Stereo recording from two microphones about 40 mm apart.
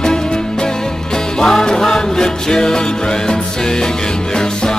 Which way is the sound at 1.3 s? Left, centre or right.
Centre.